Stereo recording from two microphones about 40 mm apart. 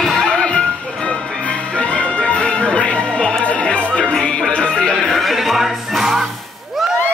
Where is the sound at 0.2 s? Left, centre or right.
Left.